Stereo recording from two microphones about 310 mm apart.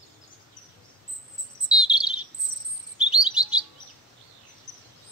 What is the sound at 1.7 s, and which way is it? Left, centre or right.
Chirp, centre.